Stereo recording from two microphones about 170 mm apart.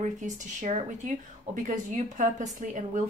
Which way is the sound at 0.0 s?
45° right (ahead or behind).